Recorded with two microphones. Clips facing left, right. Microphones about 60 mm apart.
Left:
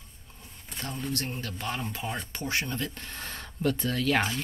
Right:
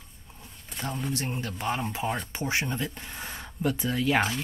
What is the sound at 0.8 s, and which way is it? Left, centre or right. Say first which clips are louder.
Speech: right 2 dB; centre.